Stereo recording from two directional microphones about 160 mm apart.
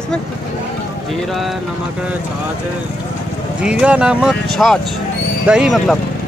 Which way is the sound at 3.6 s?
5° right (ahead or behind).